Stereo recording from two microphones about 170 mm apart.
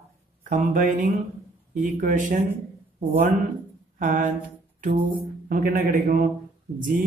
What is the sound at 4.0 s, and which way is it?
Speech, 50° right (ahead or behind).